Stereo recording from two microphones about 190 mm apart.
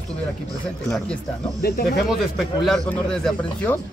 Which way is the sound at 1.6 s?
55° left (ahead or behind).